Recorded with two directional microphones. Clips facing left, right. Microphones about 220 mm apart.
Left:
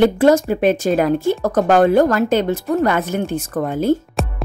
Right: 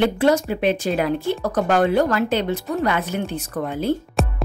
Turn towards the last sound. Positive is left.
turn(degrees=0)  # may be behind; listen again after turning